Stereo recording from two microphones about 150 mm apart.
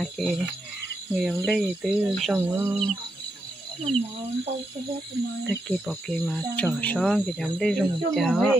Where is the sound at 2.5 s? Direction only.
15° right (ahead or behind).